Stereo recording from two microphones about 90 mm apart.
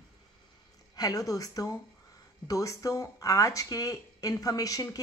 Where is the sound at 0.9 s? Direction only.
40° left (ahead or behind).